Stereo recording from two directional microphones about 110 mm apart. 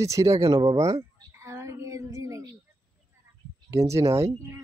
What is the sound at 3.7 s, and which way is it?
Speech, 25° right (ahead or behind).